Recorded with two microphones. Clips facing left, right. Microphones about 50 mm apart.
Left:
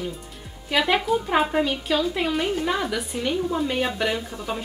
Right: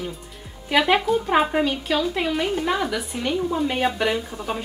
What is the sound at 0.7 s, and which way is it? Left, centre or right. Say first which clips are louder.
Speech: right 2 dB; centre.